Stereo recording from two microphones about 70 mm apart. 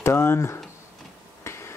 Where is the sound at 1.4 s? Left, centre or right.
Left.